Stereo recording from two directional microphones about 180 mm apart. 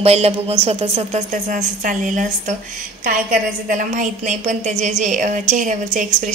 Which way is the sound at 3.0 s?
45° right (ahead or behind).